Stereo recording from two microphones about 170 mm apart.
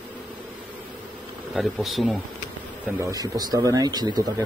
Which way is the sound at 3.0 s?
20° right (ahead or behind).